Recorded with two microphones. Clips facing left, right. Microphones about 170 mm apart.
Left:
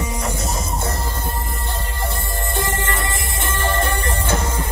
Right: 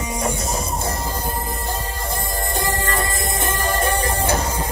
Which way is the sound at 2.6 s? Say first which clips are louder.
Even; 20° left (ahead or behind).